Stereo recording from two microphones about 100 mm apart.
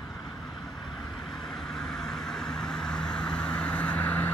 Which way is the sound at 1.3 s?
5° left (ahead or behind).